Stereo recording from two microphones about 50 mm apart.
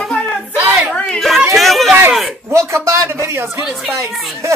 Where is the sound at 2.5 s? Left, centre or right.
Right.